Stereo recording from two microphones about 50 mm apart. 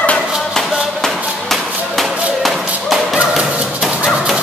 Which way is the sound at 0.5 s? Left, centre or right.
Centre.